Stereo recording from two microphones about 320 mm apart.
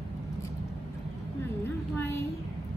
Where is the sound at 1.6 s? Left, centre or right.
Centre.